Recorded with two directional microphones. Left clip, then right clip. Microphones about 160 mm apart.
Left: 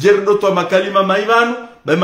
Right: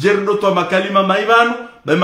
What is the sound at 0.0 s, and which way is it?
A man's voice, 20° left (ahead or behind).